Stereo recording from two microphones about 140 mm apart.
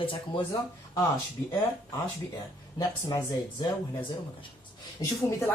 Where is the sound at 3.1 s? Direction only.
35° left (ahead or behind).